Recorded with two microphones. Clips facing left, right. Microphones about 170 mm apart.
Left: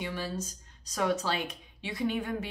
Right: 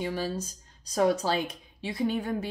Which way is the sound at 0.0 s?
35° right (ahead or behind).